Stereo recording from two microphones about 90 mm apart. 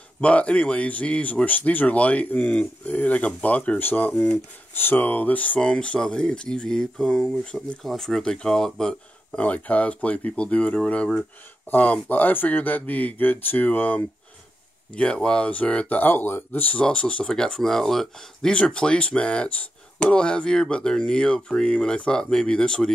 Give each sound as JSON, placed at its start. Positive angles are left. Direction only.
{"t": 0.2, "sound": "speech", "side_deg": 15}
{"t": 9.4, "sound": "speech", "side_deg": 15}